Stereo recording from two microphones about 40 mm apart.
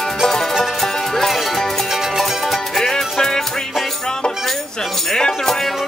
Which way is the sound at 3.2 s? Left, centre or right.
Centre.